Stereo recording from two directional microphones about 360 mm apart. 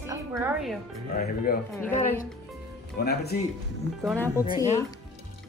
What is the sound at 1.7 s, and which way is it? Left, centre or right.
Speech, centre.